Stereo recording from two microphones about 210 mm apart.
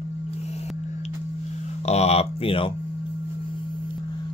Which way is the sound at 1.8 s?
30° left (ahead or behind).